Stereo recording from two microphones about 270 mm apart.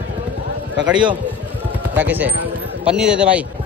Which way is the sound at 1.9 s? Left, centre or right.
Centre.